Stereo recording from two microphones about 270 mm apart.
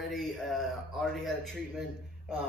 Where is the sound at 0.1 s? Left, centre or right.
Centre.